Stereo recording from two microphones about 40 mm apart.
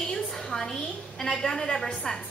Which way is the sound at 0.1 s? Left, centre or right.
Centre.